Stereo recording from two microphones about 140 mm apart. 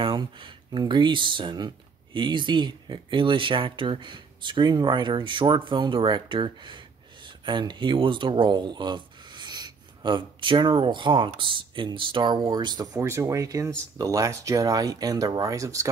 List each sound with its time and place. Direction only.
0.0 s speech: 35° right (ahead or behind)